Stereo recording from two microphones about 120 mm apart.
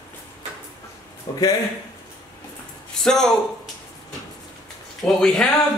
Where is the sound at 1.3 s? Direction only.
30° left (ahead or behind).